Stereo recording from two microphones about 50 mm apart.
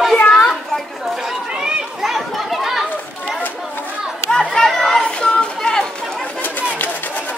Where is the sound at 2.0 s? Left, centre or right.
Centre.